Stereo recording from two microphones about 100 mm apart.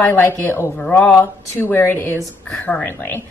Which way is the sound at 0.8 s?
15° left (ahead or behind).